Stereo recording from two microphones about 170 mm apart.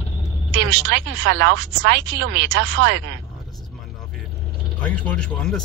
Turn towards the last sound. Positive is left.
turn(degrees=5)  # may be behind; listen again after turning